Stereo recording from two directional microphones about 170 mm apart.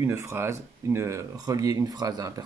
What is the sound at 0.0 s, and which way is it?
Speech, 15° right (ahead or behind).